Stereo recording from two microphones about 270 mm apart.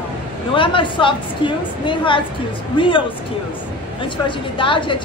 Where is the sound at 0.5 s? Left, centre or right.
Centre.